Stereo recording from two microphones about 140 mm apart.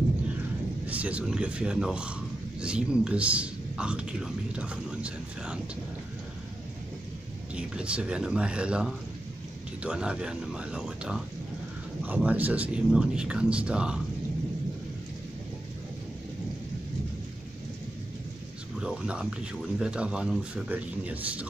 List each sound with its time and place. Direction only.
0.8 s speech: 10° right (ahead or behind)
7.5 s speech: 10° right (ahead or behind)
18.8 s speech: 5° right (ahead or behind)